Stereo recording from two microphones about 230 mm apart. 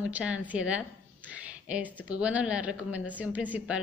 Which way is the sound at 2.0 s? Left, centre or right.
Centre.